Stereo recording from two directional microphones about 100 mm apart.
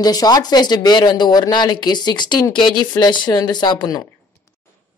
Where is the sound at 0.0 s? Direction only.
40° left (ahead or behind).